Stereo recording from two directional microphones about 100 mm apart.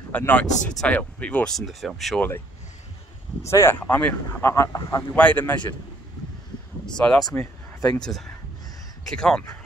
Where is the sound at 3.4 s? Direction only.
25° left (ahead or behind).